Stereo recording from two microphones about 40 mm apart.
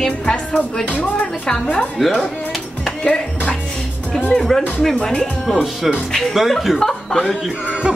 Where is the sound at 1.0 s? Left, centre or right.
Left.